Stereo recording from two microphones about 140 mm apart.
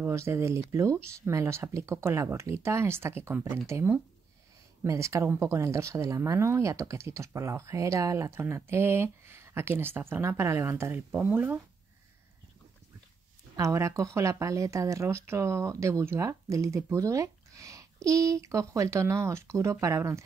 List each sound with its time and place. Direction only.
0.0 s speech: 20° right (ahead or behind)
13.6 s speech: 20° right (ahead or behind)